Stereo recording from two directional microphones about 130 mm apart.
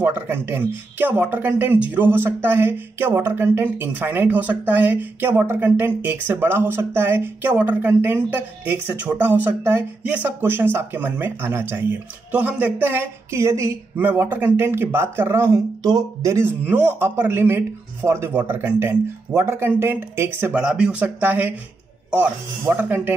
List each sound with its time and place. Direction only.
0.0 s speech: 15° right (ahead or behind)